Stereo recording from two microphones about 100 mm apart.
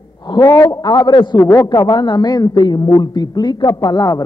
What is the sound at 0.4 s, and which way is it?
Speech, 30° left (ahead or behind).